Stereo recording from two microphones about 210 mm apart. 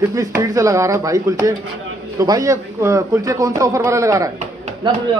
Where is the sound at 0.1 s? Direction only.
15° right (ahead or behind).